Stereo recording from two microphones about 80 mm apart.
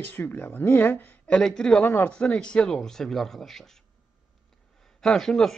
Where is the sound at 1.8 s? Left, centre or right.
Left; by 3.7 s centre.